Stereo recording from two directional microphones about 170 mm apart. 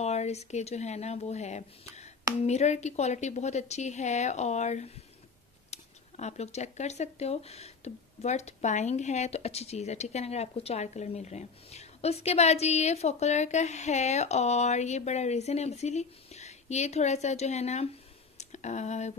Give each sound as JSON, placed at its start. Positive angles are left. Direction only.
{"t": 0.0, "sound": "a woman's voice", "side_deg": 40}